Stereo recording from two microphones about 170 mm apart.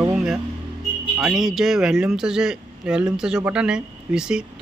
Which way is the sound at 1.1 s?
5° right (ahead or behind).